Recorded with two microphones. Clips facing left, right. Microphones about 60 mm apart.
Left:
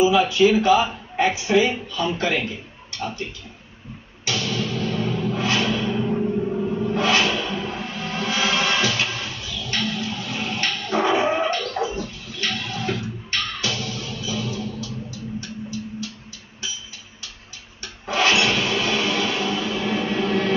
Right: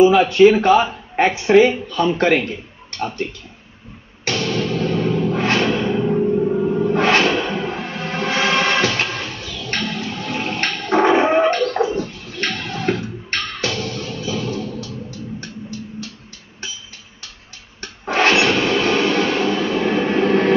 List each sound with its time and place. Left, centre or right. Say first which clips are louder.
0.0 s speech: right 6 dB; right
4.2 s music: right 5 dB; right
6.0 s music: right 6 dB; centre
6.8 s music: right 4 dB; right
18.0 s a sound: right 4 dB; right